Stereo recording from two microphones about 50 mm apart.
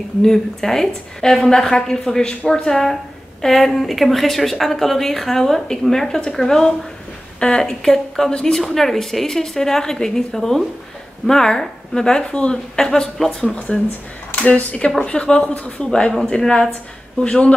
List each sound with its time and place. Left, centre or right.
0.2 s a woman's voice: centre
8.6 s a woman's voice: centre; by 15.9 s left
15.9 s a woman's voice: centre